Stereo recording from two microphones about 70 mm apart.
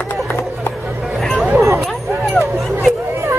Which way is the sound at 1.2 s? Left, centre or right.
Centre.